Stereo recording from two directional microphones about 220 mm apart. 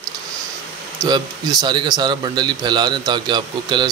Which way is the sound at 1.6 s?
20° right (ahead or behind).